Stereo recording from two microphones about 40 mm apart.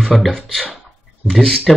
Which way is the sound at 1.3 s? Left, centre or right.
Centre.